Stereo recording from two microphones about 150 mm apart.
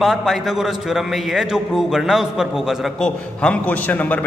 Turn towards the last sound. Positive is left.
turn(degrees=10)  # may be behind; listen again after turning